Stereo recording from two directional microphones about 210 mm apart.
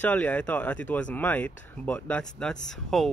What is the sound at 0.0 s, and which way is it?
Speech, 5° left (ahead or behind).